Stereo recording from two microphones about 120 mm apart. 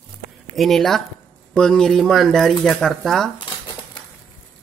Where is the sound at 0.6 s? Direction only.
Centre (ahead or behind).